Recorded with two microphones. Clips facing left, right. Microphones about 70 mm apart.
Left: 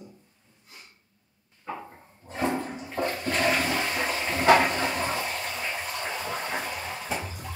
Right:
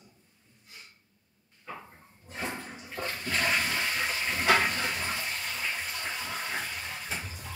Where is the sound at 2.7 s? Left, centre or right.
Left.